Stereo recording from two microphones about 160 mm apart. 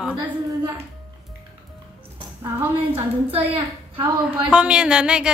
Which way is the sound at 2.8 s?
35° right (ahead or behind).